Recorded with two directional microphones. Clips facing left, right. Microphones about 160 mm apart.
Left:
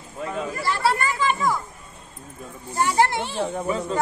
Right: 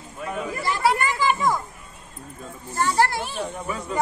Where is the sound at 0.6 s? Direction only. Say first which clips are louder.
Right 1 dB; 15° right (ahead or behind).